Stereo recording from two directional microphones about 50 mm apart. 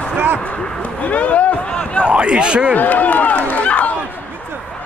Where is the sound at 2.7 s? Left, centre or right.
Left.